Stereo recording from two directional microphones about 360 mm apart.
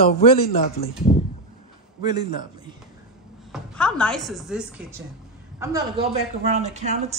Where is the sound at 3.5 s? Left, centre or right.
Centre.